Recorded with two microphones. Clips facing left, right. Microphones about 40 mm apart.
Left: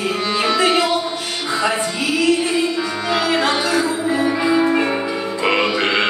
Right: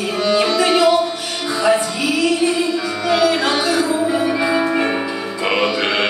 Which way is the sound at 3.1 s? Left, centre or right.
Centre.